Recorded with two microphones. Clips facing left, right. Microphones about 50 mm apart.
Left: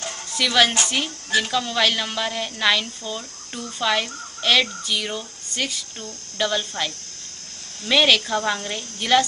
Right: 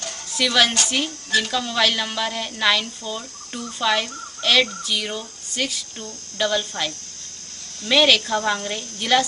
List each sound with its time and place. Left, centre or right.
0.4 s a woman's voice: centre
7.9 s a woman's voice: centre